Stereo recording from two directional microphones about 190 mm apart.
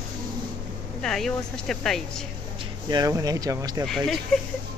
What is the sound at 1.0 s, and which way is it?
Speech, centre (ahead or behind).